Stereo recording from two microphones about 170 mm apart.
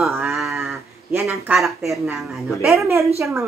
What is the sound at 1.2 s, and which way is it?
A woman's voice, centre (ahead or behind).